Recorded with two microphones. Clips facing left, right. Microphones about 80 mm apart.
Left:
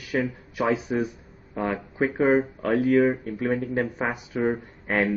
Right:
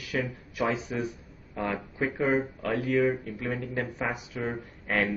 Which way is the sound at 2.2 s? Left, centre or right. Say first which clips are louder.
Left 6 dB; left.